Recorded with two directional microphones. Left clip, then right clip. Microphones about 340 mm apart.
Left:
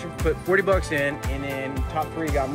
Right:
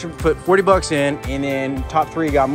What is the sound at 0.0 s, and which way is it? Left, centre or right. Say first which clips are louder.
Speech: right 7 dB; centre.